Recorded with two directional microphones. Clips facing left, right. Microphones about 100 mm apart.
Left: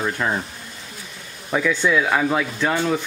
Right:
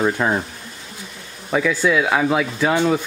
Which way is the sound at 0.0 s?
15° right (ahead or behind).